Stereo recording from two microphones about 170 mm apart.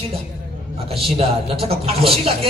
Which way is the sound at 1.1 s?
35° right (ahead or behind).